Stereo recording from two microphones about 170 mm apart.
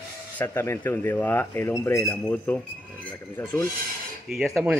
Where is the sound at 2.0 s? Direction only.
5° left (ahead or behind).